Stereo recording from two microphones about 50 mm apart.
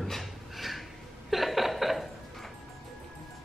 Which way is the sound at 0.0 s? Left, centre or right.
Centre.